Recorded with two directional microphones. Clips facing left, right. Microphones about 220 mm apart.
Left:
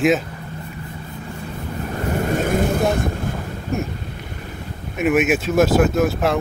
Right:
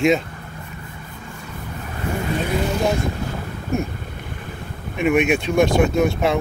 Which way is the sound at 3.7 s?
Centre (ahead or behind).